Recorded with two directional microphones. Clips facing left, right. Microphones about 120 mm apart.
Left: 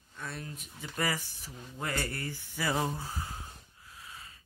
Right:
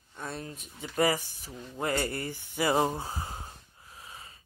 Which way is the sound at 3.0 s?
30° right (ahead or behind).